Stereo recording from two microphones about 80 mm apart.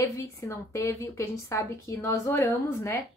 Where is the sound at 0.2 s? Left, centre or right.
Left.